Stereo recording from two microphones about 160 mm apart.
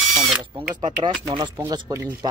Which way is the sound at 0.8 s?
30° right (ahead or behind).